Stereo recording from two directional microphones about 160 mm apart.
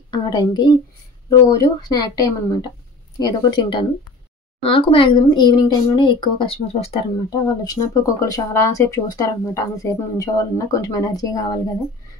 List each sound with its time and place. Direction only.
0.1 s speech: 25° left (ahead or behind)
7.2 s speech: 20° left (ahead or behind)